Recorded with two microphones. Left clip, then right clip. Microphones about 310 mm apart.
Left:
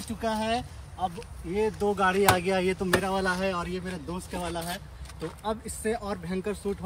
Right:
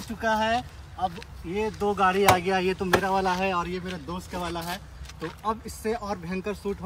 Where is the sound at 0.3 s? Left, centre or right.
Centre.